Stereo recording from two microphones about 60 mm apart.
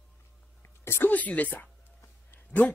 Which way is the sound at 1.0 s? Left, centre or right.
Left.